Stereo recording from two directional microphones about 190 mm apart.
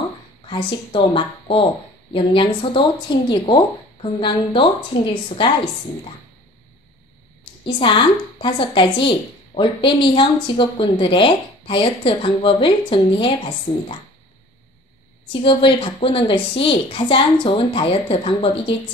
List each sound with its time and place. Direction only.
0.5 s a woman's voice: 25° left (ahead or behind)
7.6 s a woman's voice: 25° left (ahead or behind)
15.4 s a woman's voice: 30° left (ahead or behind)